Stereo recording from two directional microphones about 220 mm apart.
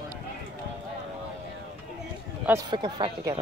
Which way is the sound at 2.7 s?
20° right (ahead or behind).